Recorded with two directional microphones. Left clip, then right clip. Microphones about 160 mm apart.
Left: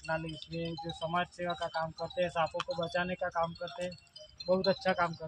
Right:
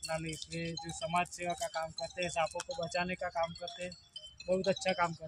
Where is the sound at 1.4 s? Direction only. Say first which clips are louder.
Left 2 dB; centre (ahead or behind).